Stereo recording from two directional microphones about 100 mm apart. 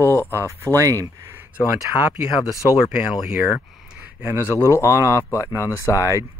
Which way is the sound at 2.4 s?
30° left (ahead or behind).